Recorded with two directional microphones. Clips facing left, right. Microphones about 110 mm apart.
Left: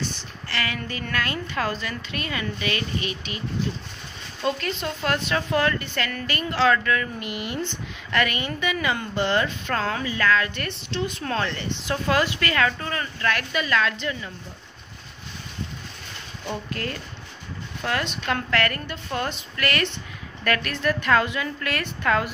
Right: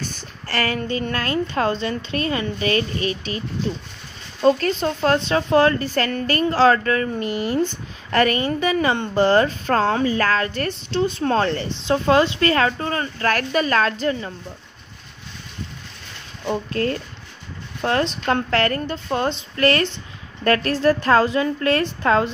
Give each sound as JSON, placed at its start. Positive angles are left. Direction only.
{"t": 0.0, "sound": "a sound", "side_deg": -45}
{"t": 0.7, "sound": "a woman's voice", "side_deg": -30}
{"t": 16.4, "sound": "a woman's voice", "side_deg": -35}